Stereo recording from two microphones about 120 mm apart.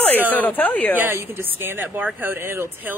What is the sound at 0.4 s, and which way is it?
Speech, 15° left (ahead or behind).